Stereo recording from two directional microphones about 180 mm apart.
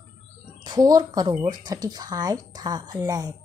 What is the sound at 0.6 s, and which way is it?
A woman's voice, 20° right (ahead or behind).